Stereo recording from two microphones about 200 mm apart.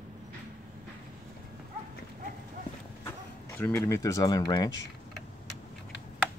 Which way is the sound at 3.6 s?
10° left (ahead or behind).